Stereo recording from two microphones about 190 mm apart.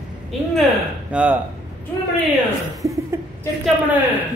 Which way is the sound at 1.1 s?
5° right (ahead or behind).